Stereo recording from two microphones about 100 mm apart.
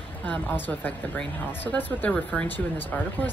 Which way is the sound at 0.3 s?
15° left (ahead or behind).